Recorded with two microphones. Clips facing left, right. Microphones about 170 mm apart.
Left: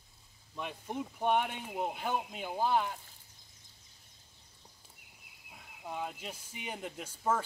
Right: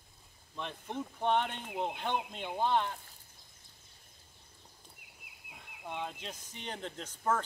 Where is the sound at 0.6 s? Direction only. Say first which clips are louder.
Left 1 dB; 10° left (ahead or behind).